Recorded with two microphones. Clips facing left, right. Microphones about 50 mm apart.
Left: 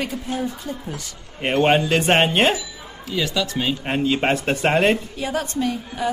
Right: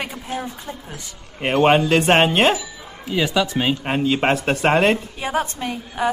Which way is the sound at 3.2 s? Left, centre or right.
Centre.